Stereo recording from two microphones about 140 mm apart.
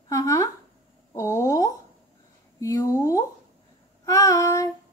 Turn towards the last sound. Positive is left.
turn(degrees=25)  # may be behind; listen again after turning